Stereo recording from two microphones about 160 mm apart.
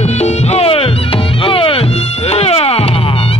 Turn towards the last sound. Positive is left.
turn(degrees=35)  # may be behind; listen again after turning